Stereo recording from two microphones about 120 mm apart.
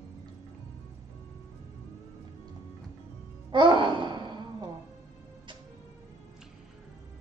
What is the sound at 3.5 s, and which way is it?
Gasp, 40° right (ahead or behind).